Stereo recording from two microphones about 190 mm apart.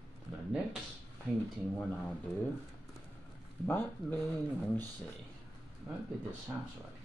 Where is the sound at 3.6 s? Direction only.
10° left (ahead or behind).